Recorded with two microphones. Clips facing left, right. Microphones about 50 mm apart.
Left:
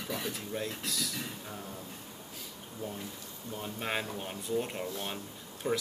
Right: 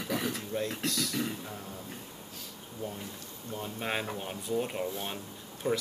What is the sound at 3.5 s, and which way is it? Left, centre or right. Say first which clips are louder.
Speech: right 1 dB; centre.